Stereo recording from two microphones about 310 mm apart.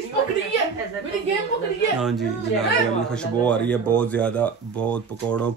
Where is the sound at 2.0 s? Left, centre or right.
Centre.